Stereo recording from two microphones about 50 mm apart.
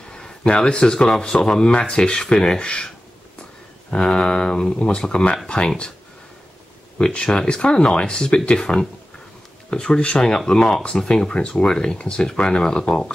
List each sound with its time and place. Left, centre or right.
0.5 s speech: left
3.9 s speech: centre
7.0 s speech: left